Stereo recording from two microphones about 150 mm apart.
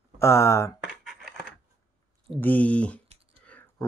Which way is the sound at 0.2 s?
20° left (ahead or behind).